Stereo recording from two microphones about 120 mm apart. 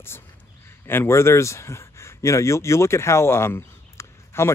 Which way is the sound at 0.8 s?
20° left (ahead or behind).